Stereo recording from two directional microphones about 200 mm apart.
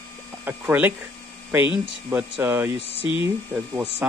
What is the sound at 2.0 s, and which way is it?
Speech, 5° right (ahead or behind).